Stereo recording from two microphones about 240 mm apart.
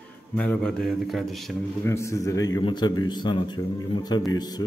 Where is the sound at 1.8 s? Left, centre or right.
Centre.